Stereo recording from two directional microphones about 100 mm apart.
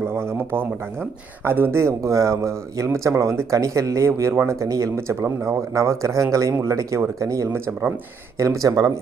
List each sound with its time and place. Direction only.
0.1 s speech: 25° right (ahead or behind)